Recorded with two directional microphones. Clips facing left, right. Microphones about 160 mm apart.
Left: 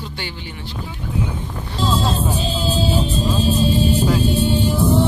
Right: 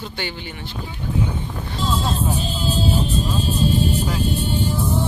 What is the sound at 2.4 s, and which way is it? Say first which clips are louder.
Music: left 2 dB; 90° left.